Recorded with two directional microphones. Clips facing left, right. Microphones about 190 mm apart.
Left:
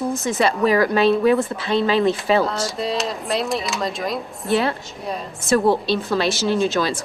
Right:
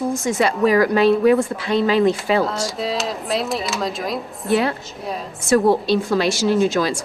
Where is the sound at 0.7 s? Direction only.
25° left (ahead or behind).